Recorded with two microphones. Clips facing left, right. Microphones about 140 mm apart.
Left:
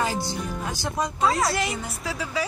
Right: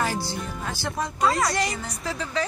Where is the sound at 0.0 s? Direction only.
20° left (ahead or behind).